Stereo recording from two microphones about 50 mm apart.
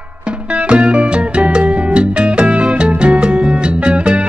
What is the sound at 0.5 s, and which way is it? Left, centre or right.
Music, right.